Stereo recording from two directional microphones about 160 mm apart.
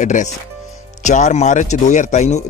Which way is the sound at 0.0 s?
50° left (ahead or behind).